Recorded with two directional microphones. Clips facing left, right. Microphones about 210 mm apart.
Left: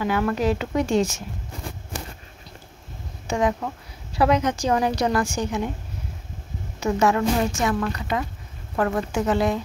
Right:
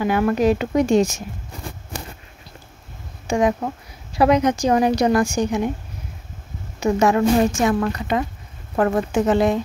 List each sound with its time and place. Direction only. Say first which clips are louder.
0.0 s a woman's voice: right 4 dB; 15° right (ahead or behind)
3.3 s a woman's voice: right 4 dB; 10° right (ahead or behind)
6.8 s a woman's voice: right 3 dB; 15° right (ahead or behind)
7.3 s a woman's voice: right 5 dB; 30° right (ahead or behind)
9.1 s a woman's voice: right 5 dB; 20° right (ahead or behind)